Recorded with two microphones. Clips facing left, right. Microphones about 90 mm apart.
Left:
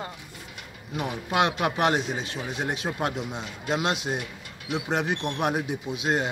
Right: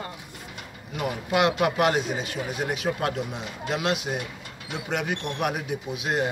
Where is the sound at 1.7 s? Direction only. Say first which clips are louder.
Right 1 dB; 30° left (ahead or behind).